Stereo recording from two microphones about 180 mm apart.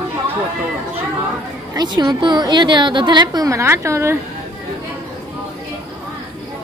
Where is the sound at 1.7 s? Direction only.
20° right (ahead or behind).